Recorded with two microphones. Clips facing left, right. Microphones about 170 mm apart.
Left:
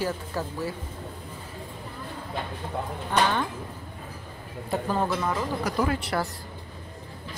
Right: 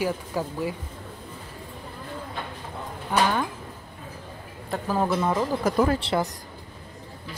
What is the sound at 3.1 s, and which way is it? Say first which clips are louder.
Speech: right 1 dB; 10° right (ahead or behind).